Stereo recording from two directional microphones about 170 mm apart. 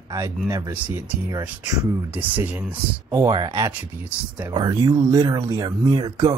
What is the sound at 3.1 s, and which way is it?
Speech, 25° right (ahead or behind).